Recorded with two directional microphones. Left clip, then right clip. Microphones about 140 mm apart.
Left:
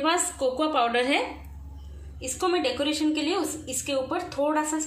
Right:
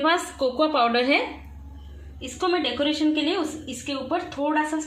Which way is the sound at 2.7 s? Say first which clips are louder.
Right 3 dB; 40° right (ahead or behind).